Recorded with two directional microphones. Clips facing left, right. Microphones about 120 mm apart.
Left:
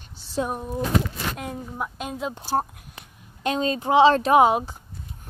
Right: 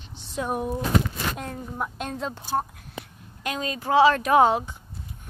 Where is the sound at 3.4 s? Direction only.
30° left (ahead or behind).